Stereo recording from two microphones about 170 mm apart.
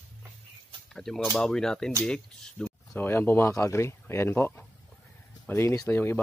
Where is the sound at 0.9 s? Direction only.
Centre (ahead or behind).